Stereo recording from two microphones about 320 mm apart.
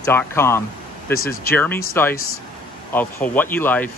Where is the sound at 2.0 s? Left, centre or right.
Centre.